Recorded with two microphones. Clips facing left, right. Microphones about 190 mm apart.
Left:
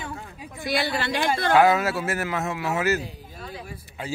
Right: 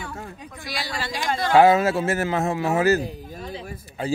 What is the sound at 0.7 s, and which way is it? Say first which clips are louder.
Speech: left 6 dB; 60° left (ahead or behind).